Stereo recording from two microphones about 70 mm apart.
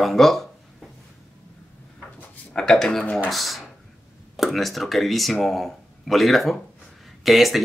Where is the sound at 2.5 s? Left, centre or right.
Centre.